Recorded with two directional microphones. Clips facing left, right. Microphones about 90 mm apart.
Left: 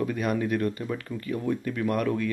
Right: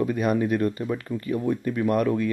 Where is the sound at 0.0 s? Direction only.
20° right (ahead or behind).